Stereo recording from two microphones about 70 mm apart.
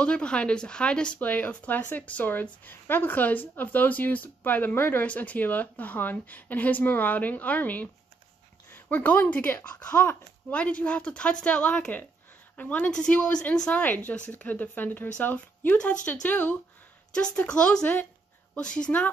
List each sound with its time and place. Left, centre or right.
0.0 s a woman's voice: centre